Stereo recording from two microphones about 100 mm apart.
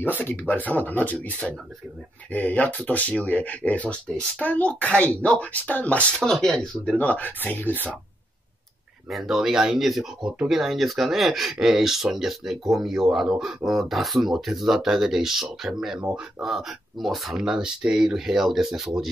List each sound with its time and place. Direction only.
0.0 s speech: 20° left (ahead or behind)
9.1 s speech: 5° right (ahead or behind)